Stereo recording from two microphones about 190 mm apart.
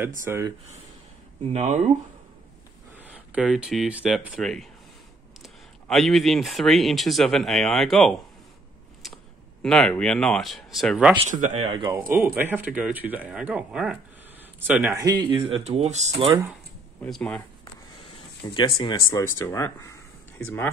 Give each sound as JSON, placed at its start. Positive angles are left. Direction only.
{"t": 0.2, "sound": "speech", "side_deg": -15}
{"t": 1.5, "sound": "speech", "side_deg": -35}
{"t": 3.0, "sound": "speech", "side_deg": -5}
{"t": 11.2, "sound": "speech", "side_deg": -40}
{"t": 12.1, "sound": "speech", "side_deg": -10}
{"t": 17.0, "sound": "speech", "side_deg": 5}
{"t": 18.4, "sound": "speech", "side_deg": 25}